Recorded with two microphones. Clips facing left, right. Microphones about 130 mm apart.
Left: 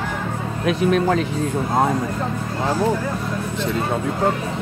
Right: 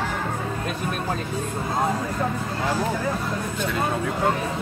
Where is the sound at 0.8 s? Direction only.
90° left.